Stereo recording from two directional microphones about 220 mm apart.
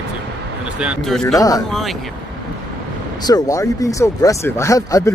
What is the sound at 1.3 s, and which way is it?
Speech, 15° left (ahead or behind).